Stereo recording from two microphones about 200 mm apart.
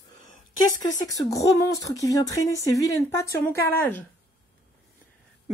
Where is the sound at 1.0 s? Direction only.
15° left (ahead or behind).